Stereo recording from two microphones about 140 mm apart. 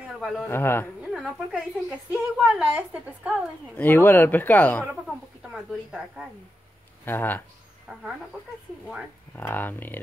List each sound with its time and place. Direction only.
0.5 s speech: 15° left (ahead or behind)
1.1 s a woman's voice: 5° right (ahead or behind)
3.7 s speech: 15° left (ahead or behind)
5.0 s speech: 5° right (ahead or behind)
7.1 s speech: 15° left (ahead or behind)
9.3 s speech: 15° left (ahead or behind)